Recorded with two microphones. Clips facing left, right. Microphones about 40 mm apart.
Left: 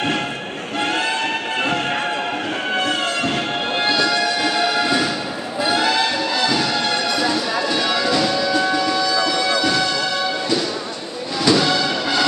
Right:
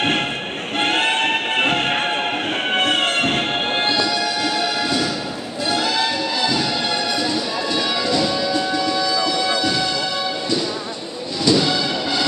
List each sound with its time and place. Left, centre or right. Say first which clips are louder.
0.0 s a sound: right 2 dB; right
0.7 s music: right 2 dB; right
3.6 s music: even; right
4.0 s music: left 2 dB; centre